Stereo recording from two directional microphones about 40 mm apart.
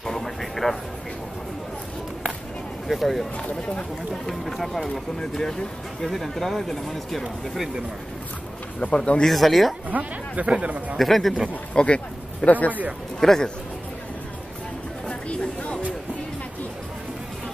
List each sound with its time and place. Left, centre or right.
0.0 s vehicle: centre
2.9 s speech: centre
6.0 s speech: centre
8.7 s speech: left
9.3 s speech: centre
9.8 s speech: right
11.0 s speech: centre
11.7 s speech: left
12.4 s speech: left
13.2 s speech: centre
15.0 s chatter: left